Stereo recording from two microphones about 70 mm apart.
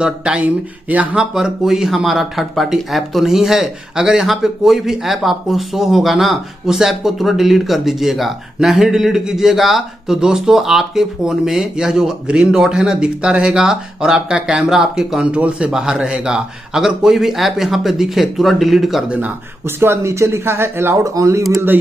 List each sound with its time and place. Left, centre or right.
0.0 s speech: centre
1.3 s speech: centre
19.0 s speech: right
19.8 s speech: right
21.0 s speech: right